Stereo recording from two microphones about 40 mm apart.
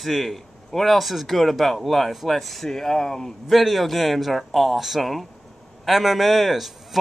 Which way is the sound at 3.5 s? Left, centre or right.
Centre.